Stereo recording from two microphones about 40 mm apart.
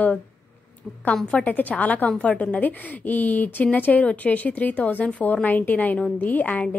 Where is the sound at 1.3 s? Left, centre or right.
Left.